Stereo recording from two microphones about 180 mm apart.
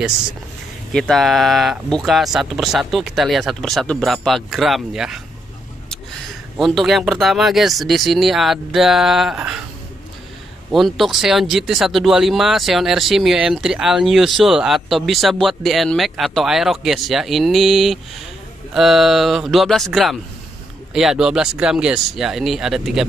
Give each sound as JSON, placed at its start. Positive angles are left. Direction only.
{"t": 0.9, "sound": "speech", "side_deg": 0}
{"t": 6.6, "sound": "speech", "side_deg": 0}
{"t": 10.7, "sound": "speech", "side_deg": 0}